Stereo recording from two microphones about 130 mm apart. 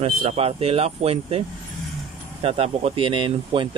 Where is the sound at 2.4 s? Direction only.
50° right (ahead or behind).